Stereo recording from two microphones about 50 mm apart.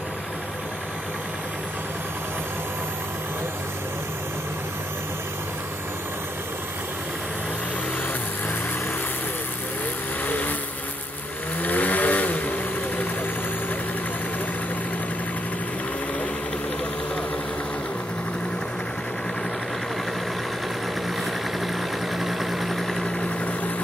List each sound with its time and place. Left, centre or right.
10.2 s vehicle: left
11.6 s vehicle: left
21.5 s vehicle: centre